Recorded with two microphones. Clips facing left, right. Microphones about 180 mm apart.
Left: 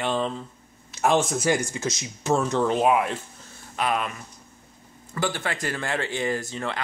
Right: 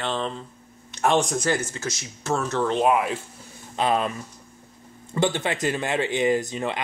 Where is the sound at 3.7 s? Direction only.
30° right (ahead or behind).